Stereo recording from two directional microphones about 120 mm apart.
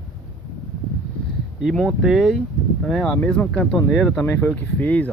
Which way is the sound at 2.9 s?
10° left (ahead or behind).